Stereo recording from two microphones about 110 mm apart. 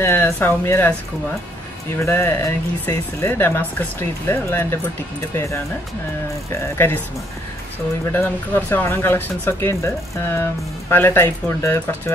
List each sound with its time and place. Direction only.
0.0 s speech: 20° left (ahead or behind)
2.0 s speech: 20° left (ahead or behind)
8.1 s speech: 20° left (ahead or behind)